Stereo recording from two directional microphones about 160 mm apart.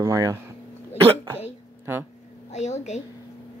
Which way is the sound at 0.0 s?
20° right (ahead or behind).